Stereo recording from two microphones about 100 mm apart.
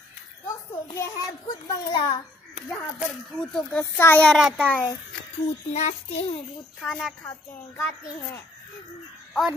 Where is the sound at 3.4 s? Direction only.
10° left (ahead or behind).